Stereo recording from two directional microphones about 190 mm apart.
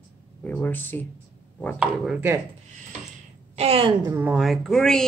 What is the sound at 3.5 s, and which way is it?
Speech, 30° right (ahead or behind).